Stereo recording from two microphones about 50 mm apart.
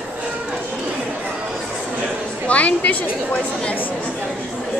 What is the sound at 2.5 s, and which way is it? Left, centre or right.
A woman's voice, left.